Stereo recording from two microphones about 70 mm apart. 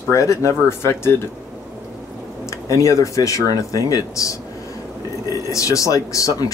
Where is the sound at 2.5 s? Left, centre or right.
Left.